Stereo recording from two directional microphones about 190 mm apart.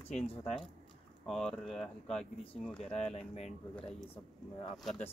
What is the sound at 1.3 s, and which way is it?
Speech, 5° left (ahead or behind).